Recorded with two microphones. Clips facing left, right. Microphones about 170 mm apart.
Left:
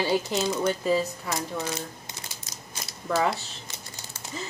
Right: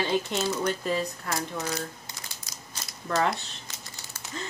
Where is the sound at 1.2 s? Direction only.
20° left (ahead or behind).